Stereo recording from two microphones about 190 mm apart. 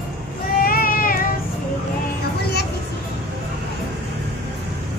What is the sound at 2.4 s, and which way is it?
Vehicle, 55° left (ahead or behind).